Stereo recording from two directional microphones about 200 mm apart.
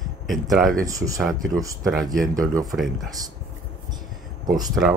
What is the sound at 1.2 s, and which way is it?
Speech, centre (ahead or behind).